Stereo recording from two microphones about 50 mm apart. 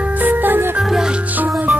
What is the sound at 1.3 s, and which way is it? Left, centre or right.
Music, right.